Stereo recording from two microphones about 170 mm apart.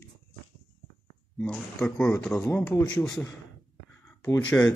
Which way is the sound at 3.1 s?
20° left (ahead or behind).